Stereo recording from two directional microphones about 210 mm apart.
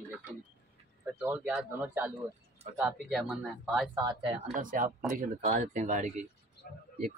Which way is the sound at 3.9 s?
20° right (ahead or behind).